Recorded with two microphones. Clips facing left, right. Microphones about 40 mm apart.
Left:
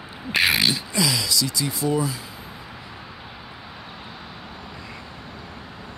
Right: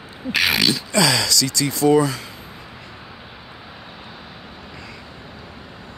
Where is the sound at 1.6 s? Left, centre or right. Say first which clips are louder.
Right 7 dB; right.